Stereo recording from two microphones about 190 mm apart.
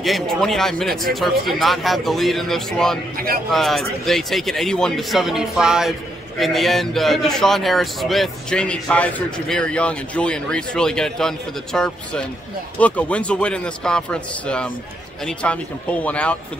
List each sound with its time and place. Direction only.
0.0 s a man's voice: centre (ahead or behind)
3.2 s a man's voice: 50° right (ahead or behind)
3.5 s a man's voice: centre (ahead or behind)